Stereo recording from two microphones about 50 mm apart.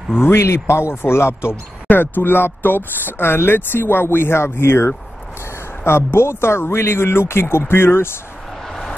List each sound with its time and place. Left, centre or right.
0.2 s speech: left
0.5 s speech: left
1.9 s speech: left
6.1 s speech: left
8.6 s vehicle: centre